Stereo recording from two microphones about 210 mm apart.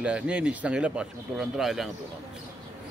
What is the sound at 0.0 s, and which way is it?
Speech, 5° right (ahead or behind).